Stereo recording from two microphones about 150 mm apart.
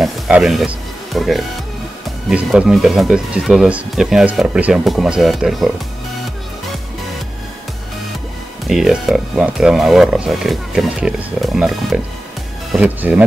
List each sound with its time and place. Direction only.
0.0 s speech: centre (ahead or behind)
8.6 s speech: centre (ahead or behind)